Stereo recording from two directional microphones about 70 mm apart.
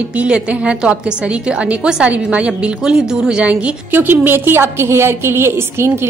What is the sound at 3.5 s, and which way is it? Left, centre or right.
A woman's voice, right.